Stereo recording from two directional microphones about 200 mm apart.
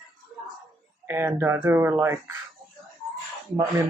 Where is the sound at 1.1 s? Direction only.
10° right (ahead or behind).